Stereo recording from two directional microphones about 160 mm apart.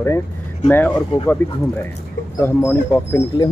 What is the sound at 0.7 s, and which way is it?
Speech, 15° left (ahead or behind).